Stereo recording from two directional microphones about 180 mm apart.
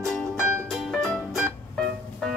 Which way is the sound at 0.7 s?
Centre (ahead or behind).